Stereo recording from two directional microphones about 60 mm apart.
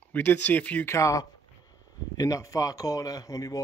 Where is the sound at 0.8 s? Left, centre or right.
Left.